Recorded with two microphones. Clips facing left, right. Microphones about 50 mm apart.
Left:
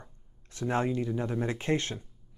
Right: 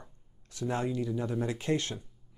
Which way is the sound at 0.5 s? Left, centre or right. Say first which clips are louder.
Left 3 dB; left.